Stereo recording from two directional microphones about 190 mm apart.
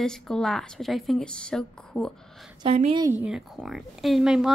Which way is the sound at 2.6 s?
30° right (ahead or behind).